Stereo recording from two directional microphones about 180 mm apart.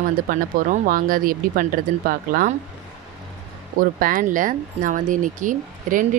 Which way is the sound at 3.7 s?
50° right (ahead or behind).